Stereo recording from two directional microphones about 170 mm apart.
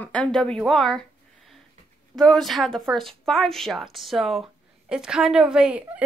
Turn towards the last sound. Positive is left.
turn(degrees=-5)  # may be behind; listen again after turning